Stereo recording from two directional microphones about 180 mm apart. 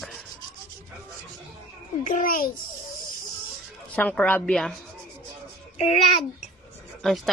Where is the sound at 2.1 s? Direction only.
50° left (ahead or behind).